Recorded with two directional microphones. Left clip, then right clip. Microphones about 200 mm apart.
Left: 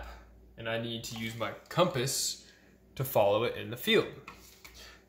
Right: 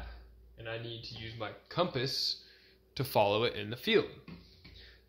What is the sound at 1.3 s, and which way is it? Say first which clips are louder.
Speech: left 5 dB; 45° right (ahead or behind).